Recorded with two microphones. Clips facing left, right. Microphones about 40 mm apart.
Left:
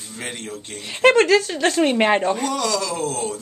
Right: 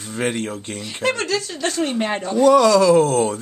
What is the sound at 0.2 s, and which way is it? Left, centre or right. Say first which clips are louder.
Speech: right 8 dB; centre.